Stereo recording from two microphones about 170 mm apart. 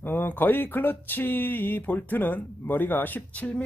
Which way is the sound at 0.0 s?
10° left (ahead or behind).